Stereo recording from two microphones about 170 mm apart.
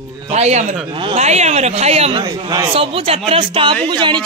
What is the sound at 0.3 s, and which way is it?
A man's voice, 40° right (ahead or behind).